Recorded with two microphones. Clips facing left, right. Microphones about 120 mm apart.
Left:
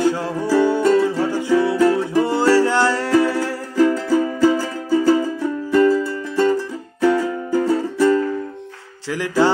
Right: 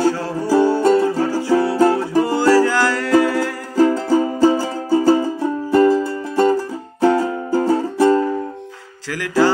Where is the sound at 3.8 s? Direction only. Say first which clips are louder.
Right 2 dB; 35° right (ahead or behind).